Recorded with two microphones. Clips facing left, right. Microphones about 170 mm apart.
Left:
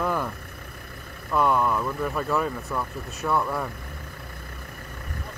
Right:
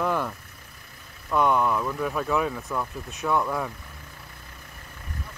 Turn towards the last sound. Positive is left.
turn(degrees=0)  # may be behind; listen again after turning